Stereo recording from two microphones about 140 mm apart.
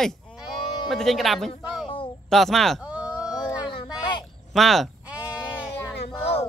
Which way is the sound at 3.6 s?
35° left (ahead or behind).